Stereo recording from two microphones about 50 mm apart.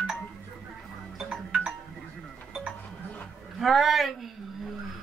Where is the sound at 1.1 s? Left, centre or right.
Centre.